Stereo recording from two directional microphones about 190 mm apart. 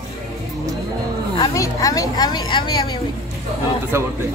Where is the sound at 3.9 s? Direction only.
15° right (ahead or behind).